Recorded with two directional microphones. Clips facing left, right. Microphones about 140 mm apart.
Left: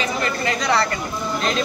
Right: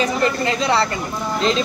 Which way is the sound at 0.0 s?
30° right (ahead or behind).